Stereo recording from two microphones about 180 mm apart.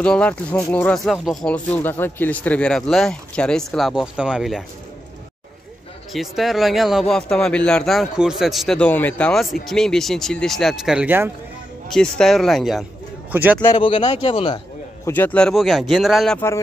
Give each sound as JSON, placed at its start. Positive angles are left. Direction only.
{"t": 0.0, "sound": "a man's voice", "side_deg": 5}
{"t": 6.1, "sound": "a man's voice", "side_deg": 0}
{"t": 11.9, "sound": "a man's voice", "side_deg": 5}
{"t": 13.7, "sound": "a man's voice", "side_deg": 30}
{"t": 15.0, "sound": "a man's voice", "side_deg": 10}